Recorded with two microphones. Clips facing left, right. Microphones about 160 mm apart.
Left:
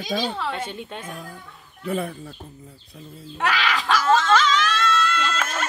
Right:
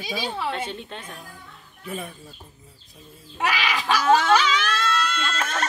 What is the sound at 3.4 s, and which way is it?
A woman's voice, 10° right (ahead or behind).